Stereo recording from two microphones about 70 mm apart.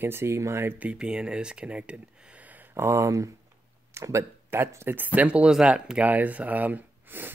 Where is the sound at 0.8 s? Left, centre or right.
Centre.